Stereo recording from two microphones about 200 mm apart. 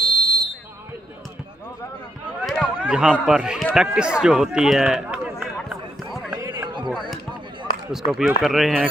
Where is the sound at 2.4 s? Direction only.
Centre (ahead or behind).